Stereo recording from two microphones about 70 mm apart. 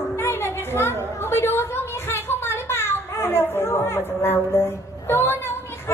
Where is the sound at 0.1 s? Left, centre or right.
Left.